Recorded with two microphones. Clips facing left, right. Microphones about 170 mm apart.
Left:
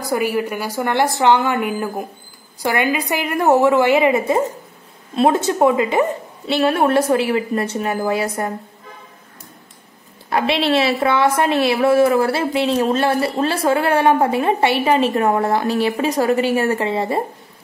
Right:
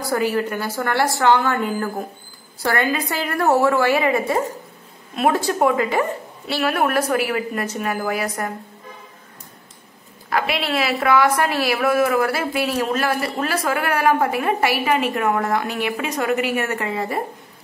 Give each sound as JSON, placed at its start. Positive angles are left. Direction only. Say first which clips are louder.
{"t": 0.0, "sound": "a woman's voice", "louder": "left 1 dB", "side_deg": 15}
{"t": 10.3, "sound": "a woman's voice", "louder": "left 5 dB", "side_deg": 30}